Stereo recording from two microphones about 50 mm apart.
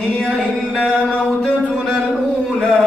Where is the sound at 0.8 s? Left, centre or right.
Left.